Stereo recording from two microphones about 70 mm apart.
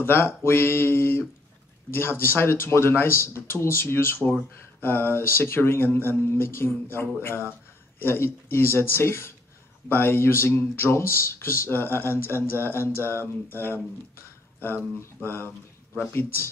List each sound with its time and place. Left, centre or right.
0.0 s speech: left